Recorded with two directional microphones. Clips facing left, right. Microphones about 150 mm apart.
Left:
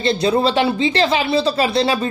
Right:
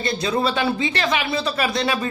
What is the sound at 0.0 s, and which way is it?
Speech, 30° left (ahead or behind).